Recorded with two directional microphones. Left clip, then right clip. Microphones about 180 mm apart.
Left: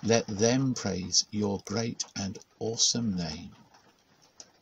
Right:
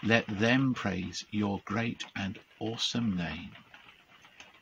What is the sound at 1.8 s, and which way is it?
Speech, 35° left (ahead or behind).